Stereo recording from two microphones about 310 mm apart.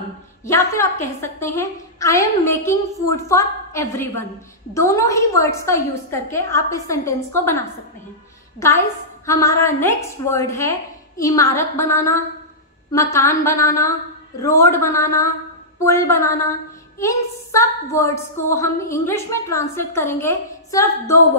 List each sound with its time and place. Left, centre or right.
0.5 s a woman's voice: centre
8.5 s a woman's voice: centre